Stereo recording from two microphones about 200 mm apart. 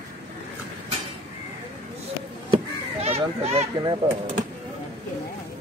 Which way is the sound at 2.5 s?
30° right (ahead or behind).